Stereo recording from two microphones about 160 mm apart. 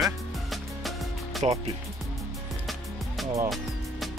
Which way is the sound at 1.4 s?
45° right (ahead or behind).